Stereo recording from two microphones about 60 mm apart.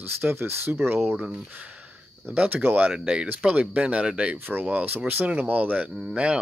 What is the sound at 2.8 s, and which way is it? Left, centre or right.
Speech, centre.